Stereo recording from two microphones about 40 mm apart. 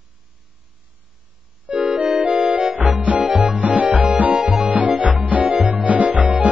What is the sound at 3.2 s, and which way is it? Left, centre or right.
Music, centre.